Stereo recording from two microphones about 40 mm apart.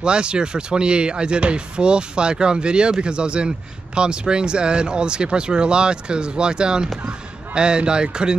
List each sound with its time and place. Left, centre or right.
0.0 s speech: right